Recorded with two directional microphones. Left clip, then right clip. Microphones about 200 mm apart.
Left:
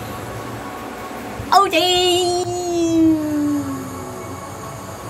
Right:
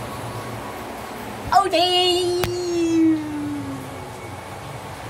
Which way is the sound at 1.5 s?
10° left (ahead or behind).